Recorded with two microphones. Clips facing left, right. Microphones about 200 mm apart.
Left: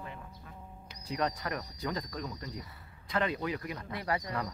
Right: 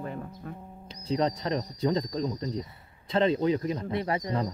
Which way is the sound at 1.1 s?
25° right (ahead or behind).